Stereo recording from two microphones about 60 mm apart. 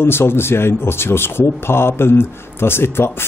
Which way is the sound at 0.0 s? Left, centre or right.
Left.